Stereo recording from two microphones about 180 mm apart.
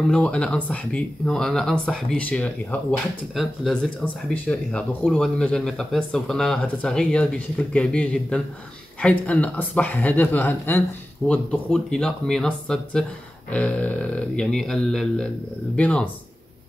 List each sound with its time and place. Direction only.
0.1 s speech: 5° left (ahead or behind)